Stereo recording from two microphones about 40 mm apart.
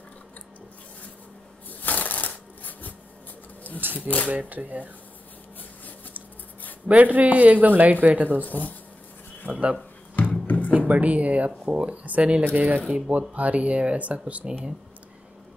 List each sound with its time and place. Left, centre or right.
1.8 s crushing: left
3.8 s speech: right
4.3 s speech: right
6.9 s speech: right
8.5 s speech: left
9.5 s speech: right
10.4 s music: left
10.9 s speech: right
12.5 s speech: right
12.8 s speech: right